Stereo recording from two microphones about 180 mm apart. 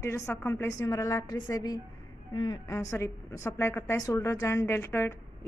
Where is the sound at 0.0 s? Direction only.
15° left (ahead or behind).